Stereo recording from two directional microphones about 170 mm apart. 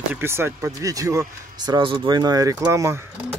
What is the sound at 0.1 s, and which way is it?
Speech, 15° right (ahead or behind).